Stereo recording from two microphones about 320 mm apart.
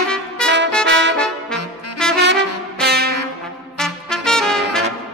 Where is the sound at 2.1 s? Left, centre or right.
Right.